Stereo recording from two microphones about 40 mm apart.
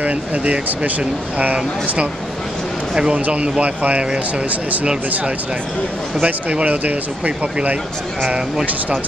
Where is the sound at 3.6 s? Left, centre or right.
Right.